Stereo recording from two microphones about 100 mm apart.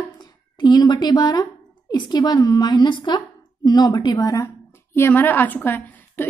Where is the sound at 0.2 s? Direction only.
40° left (ahead or behind).